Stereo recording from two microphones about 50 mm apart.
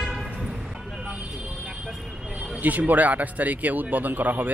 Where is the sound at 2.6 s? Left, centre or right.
Right.